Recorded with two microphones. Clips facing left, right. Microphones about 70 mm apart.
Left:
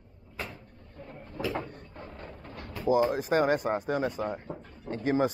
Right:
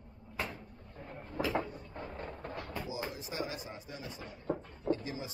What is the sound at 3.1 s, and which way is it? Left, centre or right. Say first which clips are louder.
Speech: left 14 dB; left.